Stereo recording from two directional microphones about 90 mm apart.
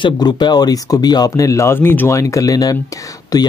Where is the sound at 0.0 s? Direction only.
55° left (ahead or behind).